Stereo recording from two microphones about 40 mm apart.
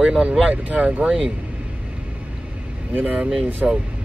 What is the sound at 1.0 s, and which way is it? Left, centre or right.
Speech, right.